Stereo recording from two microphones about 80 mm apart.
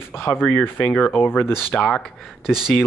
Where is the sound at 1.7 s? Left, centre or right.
Centre.